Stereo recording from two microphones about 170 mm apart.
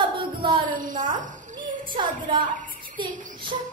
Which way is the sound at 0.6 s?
50° right (ahead or behind).